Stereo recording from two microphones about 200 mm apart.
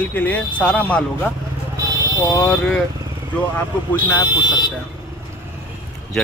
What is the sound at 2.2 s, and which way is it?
Speech, 15° left (ahead or behind).